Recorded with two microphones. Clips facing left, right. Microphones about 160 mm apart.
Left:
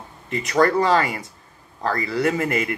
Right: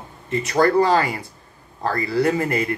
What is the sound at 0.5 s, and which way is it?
Speech, 35° right (ahead or behind).